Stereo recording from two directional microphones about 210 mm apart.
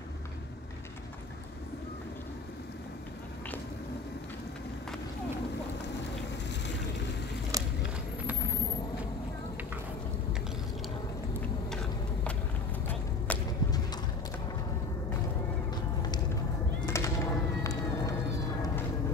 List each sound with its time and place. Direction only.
7.5 s walk: 15° right (ahead or behind)
12.8 s whip: 10° left (ahead or behind)
15.7 s a sound: 20° left (ahead or behind)
16.8 s music: 15° left (ahead or behind)